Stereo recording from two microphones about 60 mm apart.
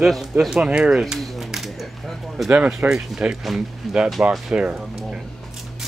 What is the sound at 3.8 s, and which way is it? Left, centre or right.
Speech, centre.